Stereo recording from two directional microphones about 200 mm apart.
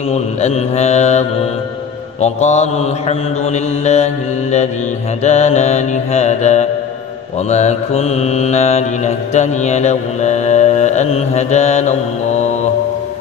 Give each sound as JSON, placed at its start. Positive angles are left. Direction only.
{"t": 0.1, "sound": "mantra", "side_deg": 35}
{"t": 2.2, "sound": "mantra", "side_deg": 35}